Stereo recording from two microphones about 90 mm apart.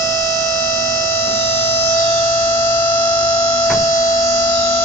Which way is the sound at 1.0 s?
25° left (ahead or behind).